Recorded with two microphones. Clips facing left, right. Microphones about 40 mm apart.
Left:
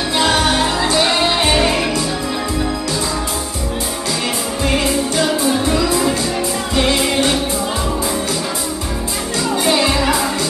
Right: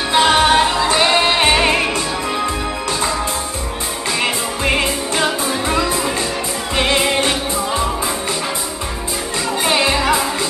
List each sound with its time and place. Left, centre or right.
0.1 s music: right
4.6 s music: right
9.7 s music: centre